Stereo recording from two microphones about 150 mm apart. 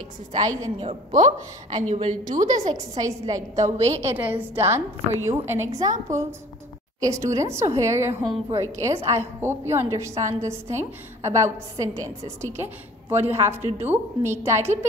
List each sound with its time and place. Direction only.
1.1 s a woman's voice: 50° right (ahead or behind)
2.5 s a woman's voice: 25° right (ahead or behind)
3.6 s a woman's voice: 45° right (ahead or behind)
4.0 s a woman's voice: 10° right (ahead or behind)